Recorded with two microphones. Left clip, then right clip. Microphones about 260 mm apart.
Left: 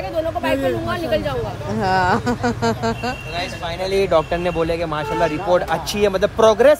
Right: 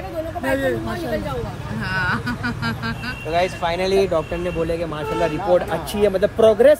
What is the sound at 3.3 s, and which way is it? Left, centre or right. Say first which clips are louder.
Speech: right 5 dB; right.